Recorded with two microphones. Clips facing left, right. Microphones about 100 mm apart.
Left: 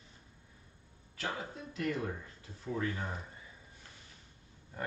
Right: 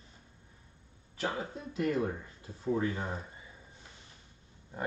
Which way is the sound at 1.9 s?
20° right (ahead or behind).